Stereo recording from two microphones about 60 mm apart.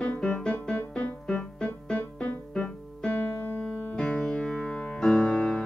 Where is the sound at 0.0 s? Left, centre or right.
Centre.